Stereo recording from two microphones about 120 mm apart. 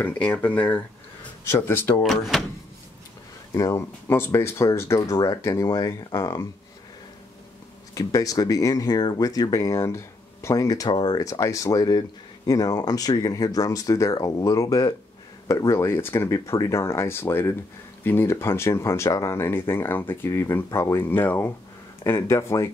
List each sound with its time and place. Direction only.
0.0 s speech: 15° left (ahead or behind)
2.0 s speech: centre (ahead or behind)
3.5 s speech: 25° left (ahead or behind)
7.9 s speech: 30° left (ahead or behind)